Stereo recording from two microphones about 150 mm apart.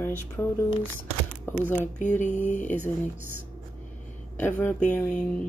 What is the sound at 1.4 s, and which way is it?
Speech, 15° left (ahead or behind).